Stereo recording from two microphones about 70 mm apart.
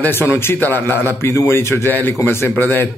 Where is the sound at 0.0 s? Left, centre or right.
Left.